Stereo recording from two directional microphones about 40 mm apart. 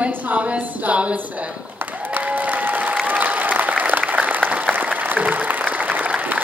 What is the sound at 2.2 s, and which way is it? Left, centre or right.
Applause, right.